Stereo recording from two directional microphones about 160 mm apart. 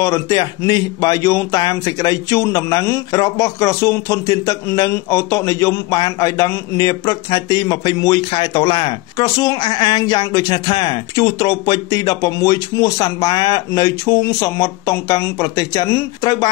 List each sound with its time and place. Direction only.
0.0 s speech: 25° left (ahead or behind)